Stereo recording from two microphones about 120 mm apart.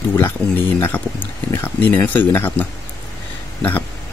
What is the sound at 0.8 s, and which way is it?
Speech, 15° left (ahead or behind).